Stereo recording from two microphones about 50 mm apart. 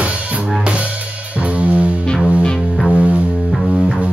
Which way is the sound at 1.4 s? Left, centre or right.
Right.